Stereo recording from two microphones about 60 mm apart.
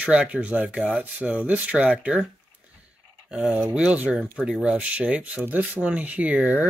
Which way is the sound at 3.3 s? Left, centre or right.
Centre.